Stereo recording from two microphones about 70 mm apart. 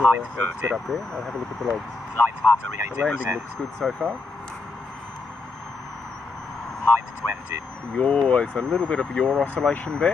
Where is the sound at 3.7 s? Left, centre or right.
Centre.